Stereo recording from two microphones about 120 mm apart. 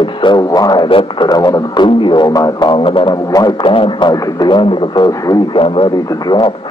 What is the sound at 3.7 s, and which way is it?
Speech, 45° left (ahead or behind).